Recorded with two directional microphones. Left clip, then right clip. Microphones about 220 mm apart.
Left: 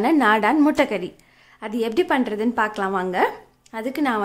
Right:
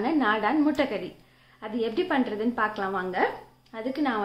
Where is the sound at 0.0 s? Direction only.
40° left (ahead or behind).